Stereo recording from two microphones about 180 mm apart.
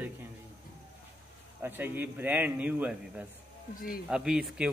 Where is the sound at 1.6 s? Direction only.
10° right (ahead or behind).